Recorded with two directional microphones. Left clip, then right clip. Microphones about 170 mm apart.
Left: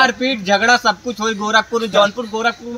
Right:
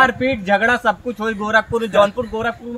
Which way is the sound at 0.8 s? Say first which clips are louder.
Left 2 dB; 10° right (ahead or behind).